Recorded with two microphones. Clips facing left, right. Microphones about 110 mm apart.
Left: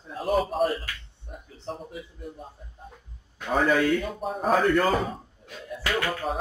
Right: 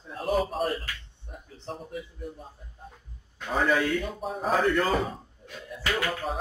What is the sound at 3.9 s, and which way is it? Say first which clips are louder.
A man's voice: left 3 dB; centre (ahead or behind).